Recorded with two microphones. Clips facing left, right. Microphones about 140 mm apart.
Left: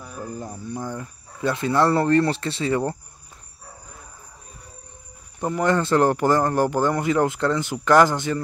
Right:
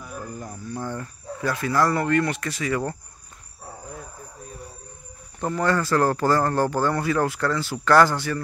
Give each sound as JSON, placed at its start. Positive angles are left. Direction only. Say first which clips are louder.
{"t": 0.0, "sound": "speech", "louder": "left 2 dB", "side_deg": 20}
{"t": 1.4, "sound": "speech", "louder": "left 2 dB", "side_deg": 25}
{"t": 5.4, "sound": "speech", "louder": "left 2 dB", "side_deg": 15}